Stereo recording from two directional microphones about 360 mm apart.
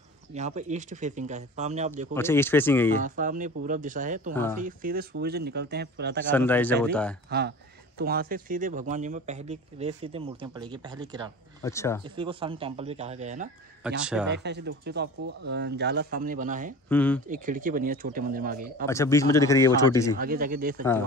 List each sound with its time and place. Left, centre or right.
0.3 s speech: centre
2.1 s speech: centre
3.0 s speech: right
6.3 s speech: centre
7.2 s speech: right; by 11.3 s centre
11.6 s speech: centre
12.0 s speech: centre
13.8 s speech: centre
14.3 s speech: right
16.9 s speech: centre
17.3 s speech: right
18.9 s speech: centre
20.2 s speech: right